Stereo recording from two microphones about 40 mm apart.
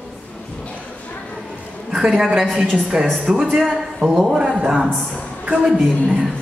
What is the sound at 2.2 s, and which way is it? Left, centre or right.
A woman's voice, centre.